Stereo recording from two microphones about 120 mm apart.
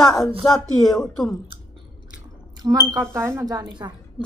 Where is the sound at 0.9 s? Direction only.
Centre (ahead or behind).